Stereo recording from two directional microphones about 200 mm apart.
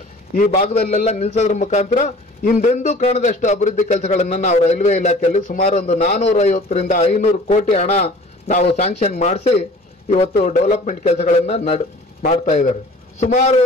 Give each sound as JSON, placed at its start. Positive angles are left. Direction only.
{"t": 0.3, "sound": "a man's voice", "side_deg": 45}
{"t": 1.0, "sound": "a man's voice", "side_deg": 30}